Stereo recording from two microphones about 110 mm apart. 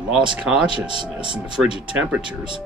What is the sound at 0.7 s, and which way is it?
Speech, 45° right (ahead or behind).